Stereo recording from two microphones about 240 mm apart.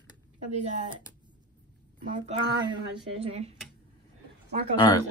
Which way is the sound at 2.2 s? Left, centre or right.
Right.